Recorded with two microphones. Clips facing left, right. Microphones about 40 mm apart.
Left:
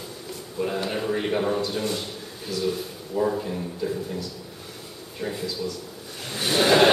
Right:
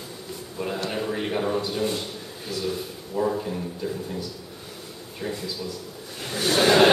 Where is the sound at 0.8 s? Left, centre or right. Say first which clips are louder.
Left 2 dB; centre.